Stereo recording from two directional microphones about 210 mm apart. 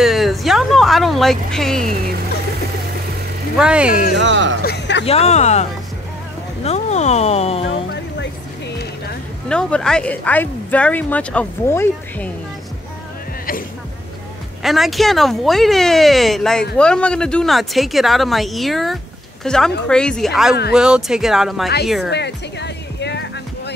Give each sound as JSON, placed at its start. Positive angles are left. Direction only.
{"t": 0.0, "sound": "vehicle", "side_deg": 0}
{"t": 3.5, "sound": "speech", "side_deg": -5}
{"t": 4.2, "sound": "speech", "side_deg": -60}
{"t": 4.6, "sound": "speech", "side_deg": 55}
{"t": 5.0, "sound": "speech", "side_deg": 30}
{"t": 9.5, "sound": "speech", "side_deg": 5}
{"t": 14.6, "sound": "speech", "side_deg": 0}
{"t": 22.1, "sound": "music", "side_deg": 55}